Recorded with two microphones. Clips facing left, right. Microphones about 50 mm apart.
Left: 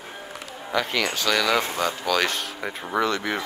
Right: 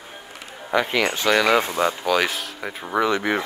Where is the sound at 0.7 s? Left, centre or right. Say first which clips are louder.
Right 4 dB; right.